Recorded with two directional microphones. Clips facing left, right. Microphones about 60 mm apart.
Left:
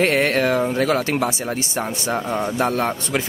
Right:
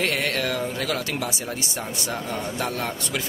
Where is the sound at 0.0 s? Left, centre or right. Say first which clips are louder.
Left 7 dB; left.